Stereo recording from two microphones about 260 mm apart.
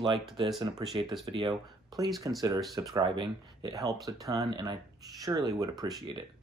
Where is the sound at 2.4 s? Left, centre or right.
Centre.